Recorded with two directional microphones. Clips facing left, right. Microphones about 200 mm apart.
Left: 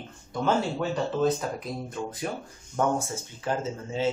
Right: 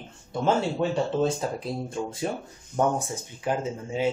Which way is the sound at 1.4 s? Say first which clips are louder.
Right 2 dB; 30° right (ahead or behind).